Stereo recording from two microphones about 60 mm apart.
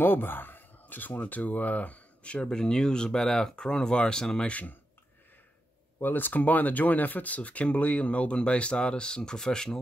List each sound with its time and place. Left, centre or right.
0.0 s speech: left; by 4.5 s centre
4.5 s speech: left
5.9 s speech: left; by 9.8 s centre